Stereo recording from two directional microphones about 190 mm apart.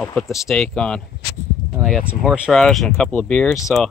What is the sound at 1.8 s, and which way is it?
Speech, 15° right (ahead or behind).